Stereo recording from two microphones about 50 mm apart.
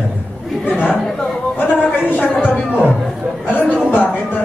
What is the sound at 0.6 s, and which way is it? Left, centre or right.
Speech, left.